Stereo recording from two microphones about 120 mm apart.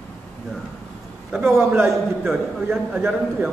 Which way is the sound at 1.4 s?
20° right (ahead or behind).